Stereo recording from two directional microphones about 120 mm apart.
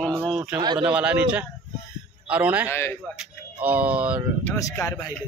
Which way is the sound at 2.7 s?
20° left (ahead or behind).